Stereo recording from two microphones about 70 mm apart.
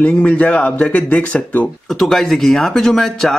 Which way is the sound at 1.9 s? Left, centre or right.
Centre.